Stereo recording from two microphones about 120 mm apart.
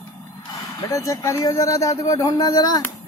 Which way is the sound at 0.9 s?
25° left (ahead or behind).